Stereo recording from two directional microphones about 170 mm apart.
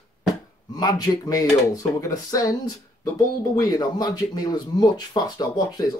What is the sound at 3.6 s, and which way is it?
Speech, 20° left (ahead or behind).